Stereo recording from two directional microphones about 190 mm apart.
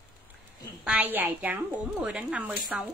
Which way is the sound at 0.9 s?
10° right (ahead or behind).